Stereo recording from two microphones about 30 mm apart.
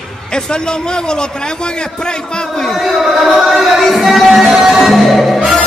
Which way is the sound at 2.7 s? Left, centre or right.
Centre.